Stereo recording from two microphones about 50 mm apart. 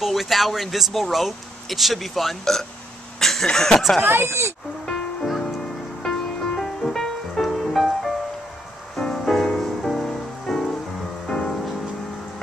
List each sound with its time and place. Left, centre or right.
0.0 s speech: centre
3.2 s a sound: centre
3.4 s speech: centre
4.0 s speech: right
4.8 s music: centre
8.9 s music: centre